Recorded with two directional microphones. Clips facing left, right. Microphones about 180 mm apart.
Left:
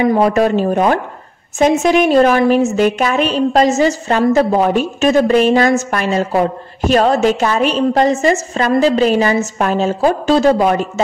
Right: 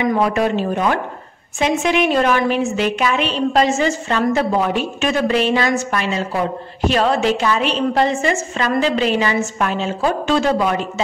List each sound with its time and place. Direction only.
0.0 s a woman's voice: 40° left (ahead or behind)